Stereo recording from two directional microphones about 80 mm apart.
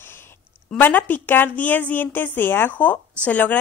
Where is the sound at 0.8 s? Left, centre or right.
Left.